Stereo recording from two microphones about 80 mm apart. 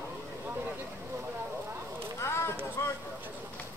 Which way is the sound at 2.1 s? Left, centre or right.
Left.